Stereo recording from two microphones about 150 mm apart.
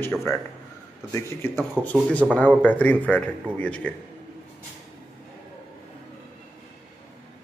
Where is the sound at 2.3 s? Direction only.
10° left (ahead or behind).